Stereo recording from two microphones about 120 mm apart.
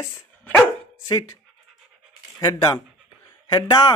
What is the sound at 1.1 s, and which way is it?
Speech, 35° left (ahead or behind).